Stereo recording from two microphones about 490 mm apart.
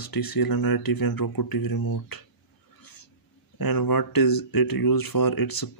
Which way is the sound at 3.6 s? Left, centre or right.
Left.